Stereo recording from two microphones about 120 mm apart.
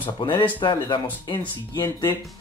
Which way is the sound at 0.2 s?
45° left (ahead or behind).